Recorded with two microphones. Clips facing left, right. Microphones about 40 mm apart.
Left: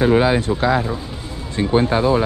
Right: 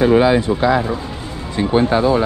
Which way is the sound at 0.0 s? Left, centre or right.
Right.